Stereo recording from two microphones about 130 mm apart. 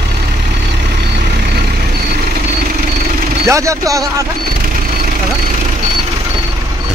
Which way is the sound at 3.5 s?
25° right (ahead or behind).